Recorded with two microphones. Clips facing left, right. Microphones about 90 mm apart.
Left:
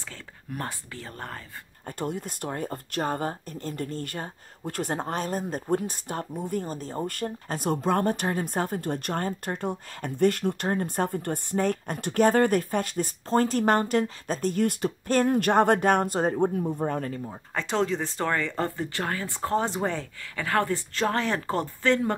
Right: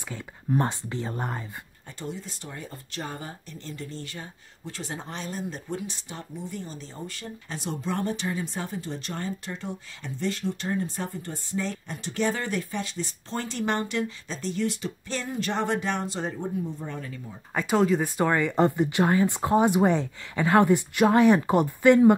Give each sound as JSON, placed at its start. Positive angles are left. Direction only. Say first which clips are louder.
{"t": 0.1, "sound": "speech", "louder": "right 12 dB", "side_deg": -20}
{"t": 1.9, "sound": "speech", "louder": "left 5 dB", "side_deg": 55}
{"t": 17.6, "sound": "speech", "louder": "right 4 dB", "side_deg": -5}